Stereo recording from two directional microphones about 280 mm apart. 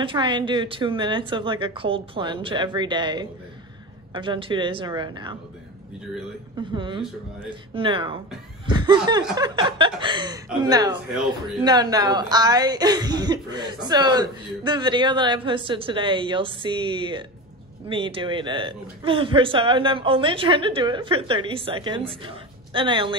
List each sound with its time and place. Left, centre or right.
0.0 s speech: centre
6.7 s speech: centre